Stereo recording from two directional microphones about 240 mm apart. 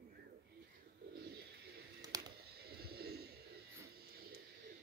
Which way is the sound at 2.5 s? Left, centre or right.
Right.